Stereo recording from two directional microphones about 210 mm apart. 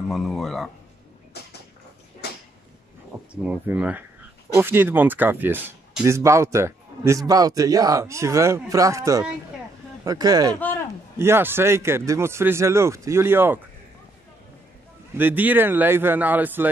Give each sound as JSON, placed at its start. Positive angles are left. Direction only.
{"t": 0.1, "sound": "speech", "side_deg": 0}
{"t": 3.4, "sound": "speech", "side_deg": -5}
{"t": 15.1, "sound": "speech", "side_deg": -10}